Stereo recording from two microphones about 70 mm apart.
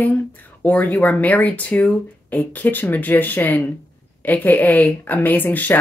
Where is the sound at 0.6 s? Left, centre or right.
Left.